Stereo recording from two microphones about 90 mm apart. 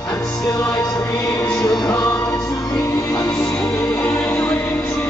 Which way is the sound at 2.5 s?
40° left (ahead or behind).